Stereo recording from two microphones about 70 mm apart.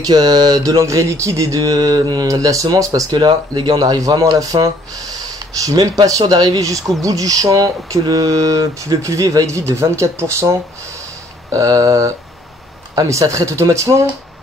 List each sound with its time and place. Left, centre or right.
0.0 s speech: right
4.4 s speech: right
5.7 s speech: right